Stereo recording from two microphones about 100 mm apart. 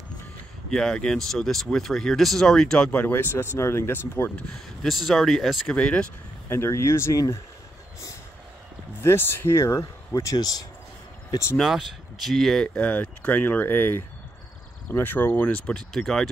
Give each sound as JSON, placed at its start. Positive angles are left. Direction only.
{"t": 0.7, "sound": "speech", "side_deg": 5}
{"t": 4.8, "sound": "speech", "side_deg": 0}
{"t": 6.5, "sound": "speech", "side_deg": 25}
{"t": 9.0, "sound": "speech", "side_deg": 25}
{"t": 11.6, "sound": "speech", "side_deg": -5}
{"t": 12.7, "sound": "speech", "side_deg": 15}